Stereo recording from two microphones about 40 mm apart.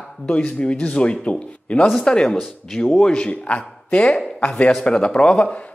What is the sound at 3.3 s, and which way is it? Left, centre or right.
Speech, left.